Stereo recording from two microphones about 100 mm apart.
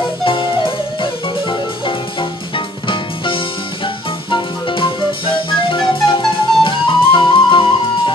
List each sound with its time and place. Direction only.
0.2 s music: 60° left (ahead or behind)
2.5 s music: 60° left (ahead or behind)